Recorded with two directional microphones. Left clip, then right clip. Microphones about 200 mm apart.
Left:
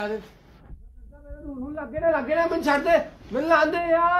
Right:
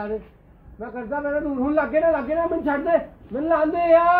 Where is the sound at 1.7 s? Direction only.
30° right (ahead or behind).